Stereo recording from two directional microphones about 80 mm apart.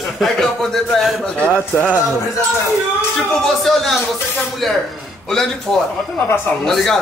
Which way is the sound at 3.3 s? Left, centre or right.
Centre.